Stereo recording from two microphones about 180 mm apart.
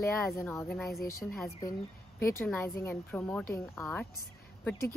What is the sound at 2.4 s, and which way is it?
Speech, 10° left (ahead or behind).